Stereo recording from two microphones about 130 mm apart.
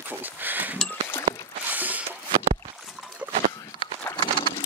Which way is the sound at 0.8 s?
10° left (ahead or behind).